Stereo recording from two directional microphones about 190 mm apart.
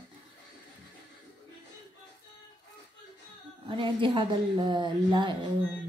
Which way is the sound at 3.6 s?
25° right (ahead or behind).